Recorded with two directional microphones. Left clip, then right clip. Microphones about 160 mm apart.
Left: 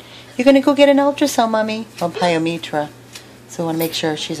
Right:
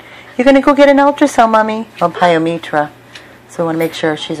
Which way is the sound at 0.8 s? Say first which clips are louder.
Right 4 dB; 5° left (ahead or behind).